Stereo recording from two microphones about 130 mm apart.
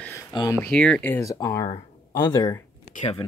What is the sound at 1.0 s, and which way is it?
Speech, 25° left (ahead or behind).